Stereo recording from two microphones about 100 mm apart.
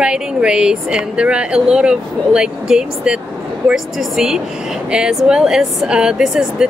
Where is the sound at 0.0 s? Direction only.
10° right (ahead or behind).